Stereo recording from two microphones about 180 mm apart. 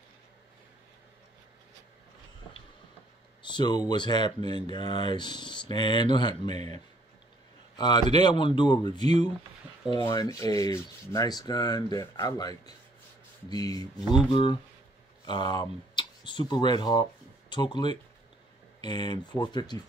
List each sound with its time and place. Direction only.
3.4 s speech: 25° left (ahead or behind)
6.5 s speech: 35° right (ahead or behind)
7.7 s a sound: 25° left (ahead or behind)
8.1 s speech: 25° left (ahead or behind)